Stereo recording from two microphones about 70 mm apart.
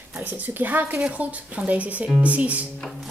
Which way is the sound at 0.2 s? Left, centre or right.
Right.